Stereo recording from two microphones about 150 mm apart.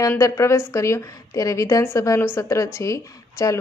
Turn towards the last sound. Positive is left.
turn(degrees=20)  # may be behind; listen again after turning